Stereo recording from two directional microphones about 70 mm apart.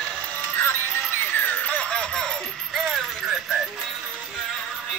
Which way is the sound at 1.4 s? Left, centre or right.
Left.